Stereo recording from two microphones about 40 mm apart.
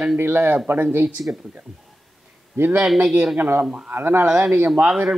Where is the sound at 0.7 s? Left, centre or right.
Right.